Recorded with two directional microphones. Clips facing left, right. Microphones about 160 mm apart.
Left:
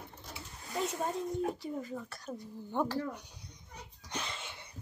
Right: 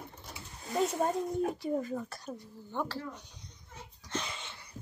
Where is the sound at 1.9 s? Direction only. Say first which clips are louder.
Right 4 dB; 45° right (ahead or behind).